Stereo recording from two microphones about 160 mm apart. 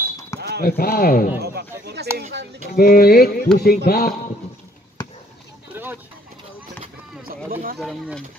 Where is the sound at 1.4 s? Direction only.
85° right.